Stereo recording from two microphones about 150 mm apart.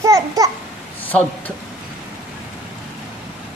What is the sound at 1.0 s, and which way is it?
Speech, 10° left (ahead or behind).